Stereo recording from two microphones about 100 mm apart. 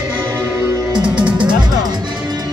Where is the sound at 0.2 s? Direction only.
30° right (ahead or behind).